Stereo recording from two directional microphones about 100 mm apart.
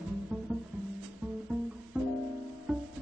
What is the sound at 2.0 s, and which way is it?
Music, 15° right (ahead or behind).